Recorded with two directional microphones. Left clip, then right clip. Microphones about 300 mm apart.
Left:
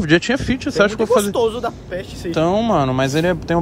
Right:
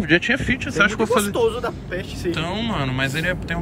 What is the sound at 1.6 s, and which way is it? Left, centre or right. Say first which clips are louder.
Speech: left 2 dB; left.